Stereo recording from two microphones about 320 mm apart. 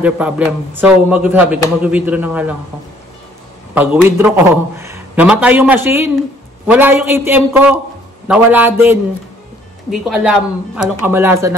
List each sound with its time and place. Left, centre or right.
0.0 s a man's voice: centre
3.7 s a man's voice: centre